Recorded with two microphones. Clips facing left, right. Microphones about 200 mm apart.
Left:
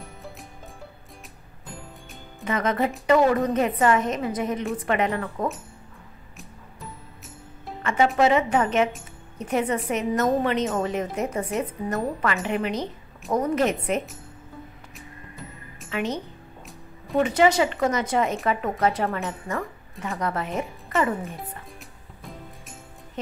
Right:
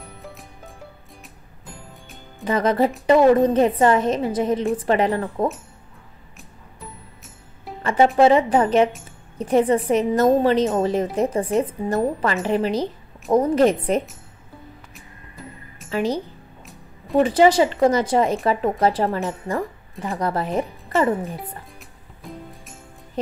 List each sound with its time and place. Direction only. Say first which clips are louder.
0.0 s music: right 1 dB; centre (ahead or behind)
1.7 s music: left 1 dB; centre (ahead or behind)
2.4 s speech: right 5 dB; 30° right (ahead or behind)
7.8 s speech: right 5 dB; 30° right (ahead or behind)
15.0 s music: left 4 dB; centre (ahead or behind)
15.9 s a woman's voice: right 5 dB; 35° right (ahead or behind)
17.2 s speech: right 4 dB; 30° right (ahead or behind)
21.7 s music: even; centre (ahead or behind)